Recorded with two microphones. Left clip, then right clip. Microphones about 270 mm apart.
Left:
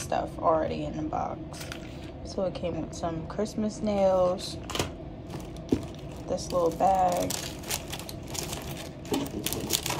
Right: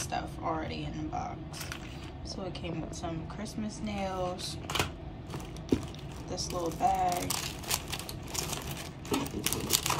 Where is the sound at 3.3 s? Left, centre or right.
Centre.